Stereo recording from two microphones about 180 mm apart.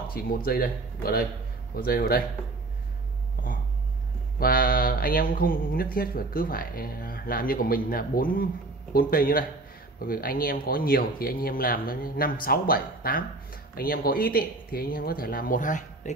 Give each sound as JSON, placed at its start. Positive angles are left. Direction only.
{"t": 0.2, "sound": "speech", "side_deg": 55}
{"t": 4.4, "sound": "speech", "side_deg": 55}